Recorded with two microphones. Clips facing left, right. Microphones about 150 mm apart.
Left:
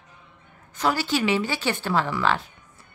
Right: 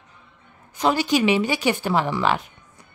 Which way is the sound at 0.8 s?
20° right (ahead or behind).